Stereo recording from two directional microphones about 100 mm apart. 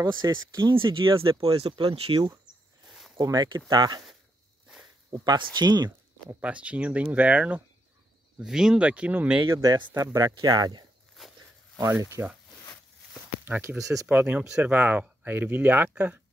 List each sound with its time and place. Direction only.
0.2 s speech: 50° right (ahead or behind)
1.5 s speech: 75° right (ahead or behind)
2.1 s speech: 55° right (ahead or behind)
2.4 s a sound: 5° right (ahead or behind)
3.2 s speech: 40° right (ahead or behind)
5.1 s speech: 45° right (ahead or behind)
6.4 s speech: 15° right (ahead or behind)
9.5 s speech: 35° right (ahead or behind)
11.1 s walk: centre (ahead or behind)
12.0 s speech: 30° right (ahead or behind)
13.5 s speech: 20° right (ahead or behind)
13.7 s speech: 35° right (ahead or behind)
14.0 s speech: 15° right (ahead or behind)